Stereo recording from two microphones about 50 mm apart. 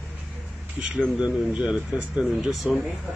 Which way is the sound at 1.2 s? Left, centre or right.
Right.